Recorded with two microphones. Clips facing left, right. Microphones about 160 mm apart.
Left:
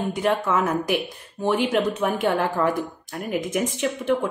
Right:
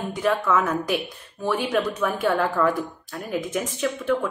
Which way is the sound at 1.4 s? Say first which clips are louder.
Left 2 dB; 20° left (ahead or behind).